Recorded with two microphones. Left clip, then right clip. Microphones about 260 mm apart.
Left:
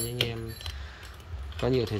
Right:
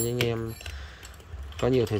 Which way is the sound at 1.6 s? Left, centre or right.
Centre.